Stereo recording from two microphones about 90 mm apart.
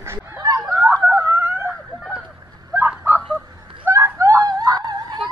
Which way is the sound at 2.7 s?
25° right (ahead or behind).